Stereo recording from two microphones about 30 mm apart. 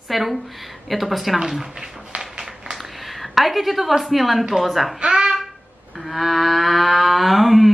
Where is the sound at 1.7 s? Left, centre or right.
Centre.